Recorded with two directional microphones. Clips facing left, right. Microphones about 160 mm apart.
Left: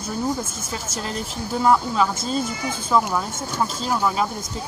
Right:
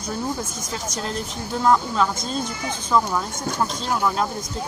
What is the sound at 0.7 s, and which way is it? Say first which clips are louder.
Speech: right 2 dB; centre (ahead or behind).